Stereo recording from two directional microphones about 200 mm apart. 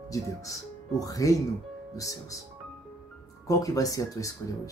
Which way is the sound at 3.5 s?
15° left (ahead or behind).